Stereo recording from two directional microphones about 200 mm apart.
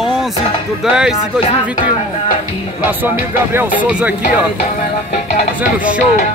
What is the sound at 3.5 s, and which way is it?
Speech, 10° right (ahead or behind).